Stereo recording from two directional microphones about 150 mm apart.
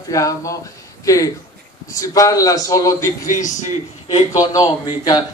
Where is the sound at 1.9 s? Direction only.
20° left (ahead or behind).